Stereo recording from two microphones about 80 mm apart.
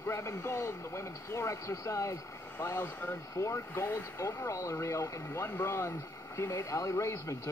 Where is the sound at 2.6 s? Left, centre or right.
Left.